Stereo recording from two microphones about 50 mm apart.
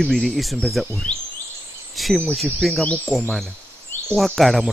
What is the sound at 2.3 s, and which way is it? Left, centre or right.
Speech, centre.